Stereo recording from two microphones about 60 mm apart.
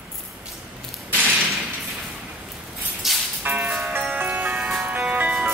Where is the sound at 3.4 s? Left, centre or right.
Right.